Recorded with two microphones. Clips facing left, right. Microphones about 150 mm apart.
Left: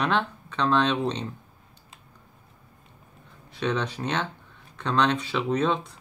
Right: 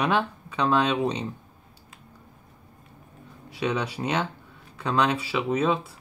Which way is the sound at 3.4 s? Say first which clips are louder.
Even; 10° right (ahead or behind).